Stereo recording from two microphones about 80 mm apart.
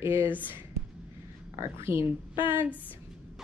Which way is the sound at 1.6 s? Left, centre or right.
Right.